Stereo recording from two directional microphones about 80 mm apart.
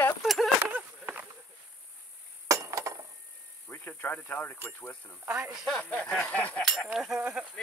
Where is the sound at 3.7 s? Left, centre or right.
Left.